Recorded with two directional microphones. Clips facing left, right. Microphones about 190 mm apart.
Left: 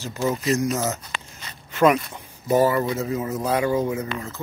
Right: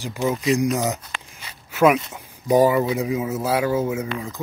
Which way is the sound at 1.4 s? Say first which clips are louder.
Right 1 dB; 10° right (ahead or behind).